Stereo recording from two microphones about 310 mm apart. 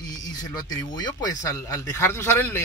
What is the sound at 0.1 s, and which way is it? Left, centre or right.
Speech, centre.